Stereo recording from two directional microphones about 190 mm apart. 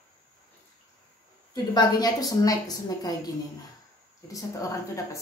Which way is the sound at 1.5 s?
20° left (ahead or behind).